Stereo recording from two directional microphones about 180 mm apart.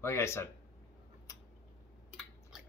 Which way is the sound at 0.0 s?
15° left (ahead or behind).